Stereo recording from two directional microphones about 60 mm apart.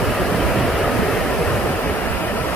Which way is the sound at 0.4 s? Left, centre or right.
Centre.